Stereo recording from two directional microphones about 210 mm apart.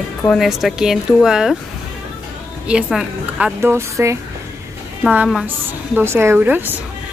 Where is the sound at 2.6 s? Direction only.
5° right (ahead or behind).